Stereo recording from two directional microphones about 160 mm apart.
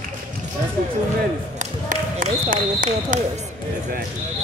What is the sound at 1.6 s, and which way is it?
Basketball bounce, 55° right (ahead or behind).